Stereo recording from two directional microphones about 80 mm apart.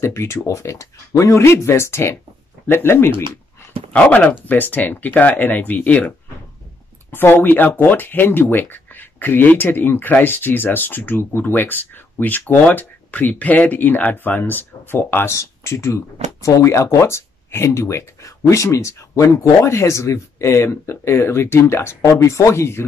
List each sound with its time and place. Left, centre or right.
0.0 s speech: left
3.9 s speech: centre; by 22.8 s left